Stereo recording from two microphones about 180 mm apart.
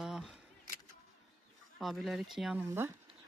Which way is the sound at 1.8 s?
Centre (ahead or behind).